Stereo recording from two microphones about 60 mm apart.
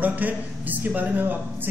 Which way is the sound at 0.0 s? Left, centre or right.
Right.